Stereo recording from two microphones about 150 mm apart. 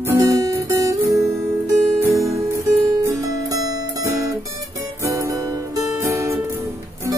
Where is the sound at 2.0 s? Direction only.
20° right (ahead or behind).